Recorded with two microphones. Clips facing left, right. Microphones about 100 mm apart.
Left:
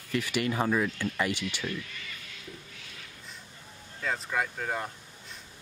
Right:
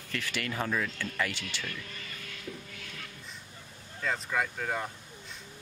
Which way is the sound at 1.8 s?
40° right (ahead or behind).